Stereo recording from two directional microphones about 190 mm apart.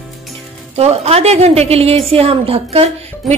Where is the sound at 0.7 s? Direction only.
35° right (ahead or behind).